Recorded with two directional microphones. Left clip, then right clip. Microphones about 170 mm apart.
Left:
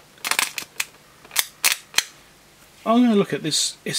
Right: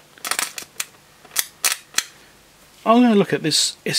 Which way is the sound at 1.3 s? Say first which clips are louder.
Left 2 dB; centre (ahead or behind).